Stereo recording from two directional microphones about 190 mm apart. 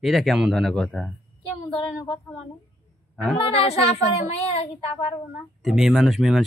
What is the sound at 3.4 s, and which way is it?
Speech, 30° left (ahead or behind).